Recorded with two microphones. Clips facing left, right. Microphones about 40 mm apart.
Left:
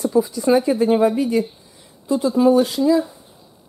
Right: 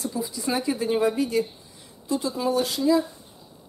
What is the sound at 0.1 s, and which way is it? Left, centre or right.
Speech, centre.